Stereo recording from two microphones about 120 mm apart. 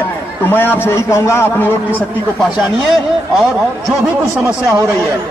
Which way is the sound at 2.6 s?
Centre (ahead or behind).